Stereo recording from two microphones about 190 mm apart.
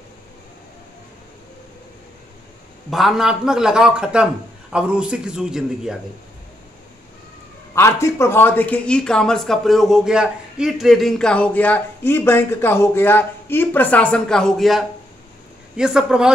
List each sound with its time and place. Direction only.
2.9 s a man's voice: centre (ahead or behind)
7.7 s a man's voice: 15° left (ahead or behind); by 16.3 s 5° right (ahead or behind)